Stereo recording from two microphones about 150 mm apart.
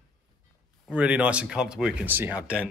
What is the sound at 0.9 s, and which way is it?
Speech, 10° right (ahead or behind).